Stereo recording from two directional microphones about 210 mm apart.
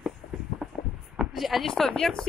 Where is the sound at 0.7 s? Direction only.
5° right (ahead or behind).